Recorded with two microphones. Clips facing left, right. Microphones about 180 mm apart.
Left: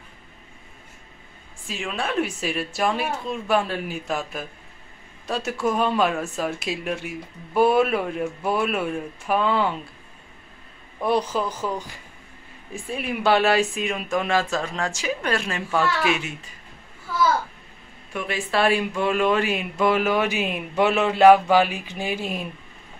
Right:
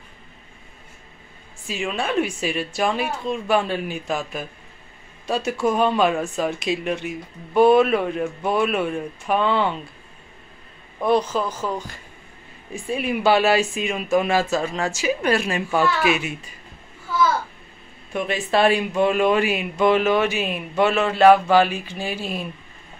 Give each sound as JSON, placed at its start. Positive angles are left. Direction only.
{"t": 1.7, "sound": "speech", "side_deg": 0}
{"t": 11.0, "sound": "speech", "side_deg": 10}
{"t": 12.7, "sound": "speech", "side_deg": 0}
{"t": 18.1, "sound": "speech", "side_deg": -20}
{"t": 19.8, "sound": "speech", "side_deg": 5}